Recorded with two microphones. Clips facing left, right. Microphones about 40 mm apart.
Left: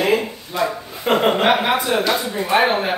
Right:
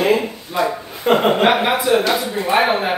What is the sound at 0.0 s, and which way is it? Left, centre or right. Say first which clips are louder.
Speech: right 2 dB; centre.